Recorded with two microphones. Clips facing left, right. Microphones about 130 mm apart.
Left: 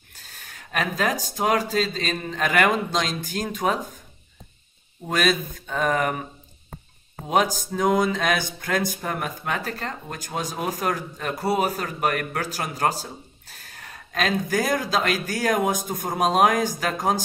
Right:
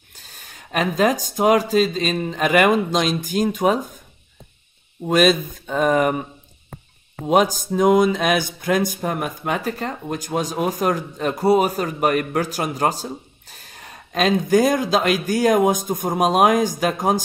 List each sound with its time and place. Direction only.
0.1 s speech: 20° right (ahead or behind)
5.0 s speech: 20° right (ahead or behind)
7.7 s speech: 15° right (ahead or behind)